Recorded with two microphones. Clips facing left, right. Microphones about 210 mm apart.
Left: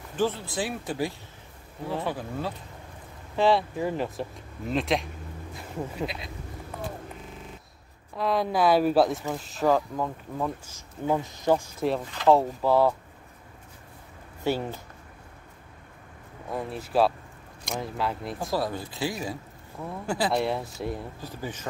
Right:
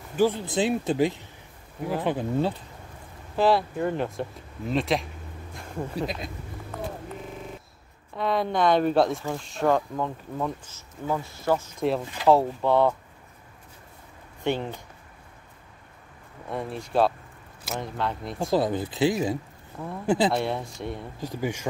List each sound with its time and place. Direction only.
0.1 s speech: 10° right (ahead or behind)
0.5 s speech: 20° right (ahead or behind)
3.3 s speech: centre (ahead or behind)
5.5 s bee: 5° left (ahead or behind)
5.9 s speech: 45° right (ahead or behind)
8.2 s speech: centre (ahead or behind)
11.1 s speech: 15° left (ahead or behind)
12.3 s speech: centre (ahead or behind)
14.4 s speech: 5° left (ahead or behind)
16.4 s speech: centre (ahead or behind)
18.5 s speech: 20° right (ahead or behind)
20.3 s speech: centre (ahead or behind)
21.2 s speech: 15° right (ahead or behind)